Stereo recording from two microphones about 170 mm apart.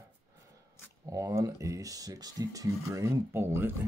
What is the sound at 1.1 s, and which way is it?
Speech, 20° right (ahead or behind).